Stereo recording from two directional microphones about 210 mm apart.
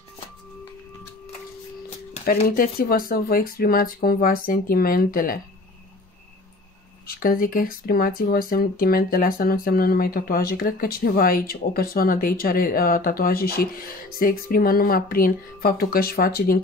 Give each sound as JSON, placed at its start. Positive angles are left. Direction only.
{"t": 2.4, "sound": "speech", "side_deg": 45}
{"t": 7.1, "sound": "speech", "side_deg": 40}